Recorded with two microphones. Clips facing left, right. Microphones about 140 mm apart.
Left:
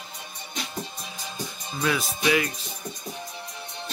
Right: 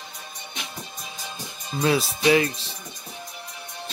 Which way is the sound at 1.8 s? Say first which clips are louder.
Right 4 dB; 30° right (ahead or behind).